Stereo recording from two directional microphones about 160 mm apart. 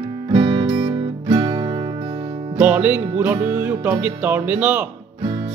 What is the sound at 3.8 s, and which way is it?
Speech, 10° right (ahead or behind).